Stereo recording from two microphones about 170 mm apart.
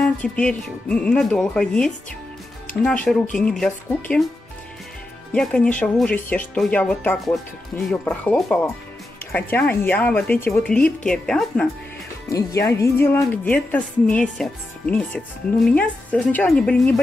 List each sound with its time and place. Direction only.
0.0 s speech: 5° left (ahead or behind)
5.3 s speech: 5° left (ahead or behind)
12.3 s speech: 20° left (ahead or behind)